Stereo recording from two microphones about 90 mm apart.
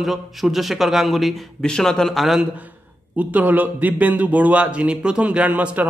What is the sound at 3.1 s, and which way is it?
A man's voice, 20° right (ahead or behind).